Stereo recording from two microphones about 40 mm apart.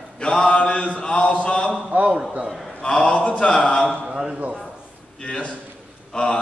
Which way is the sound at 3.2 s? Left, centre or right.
Left.